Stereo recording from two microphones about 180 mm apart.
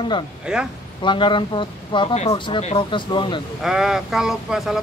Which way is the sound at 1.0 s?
25° left (ahead or behind).